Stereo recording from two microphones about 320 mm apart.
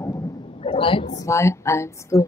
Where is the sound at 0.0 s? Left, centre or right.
Centre.